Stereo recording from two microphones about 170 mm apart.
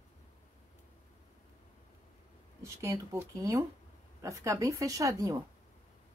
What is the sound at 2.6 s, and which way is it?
Speech, 15° right (ahead or behind).